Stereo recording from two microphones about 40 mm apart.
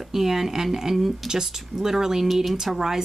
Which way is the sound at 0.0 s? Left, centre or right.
Centre.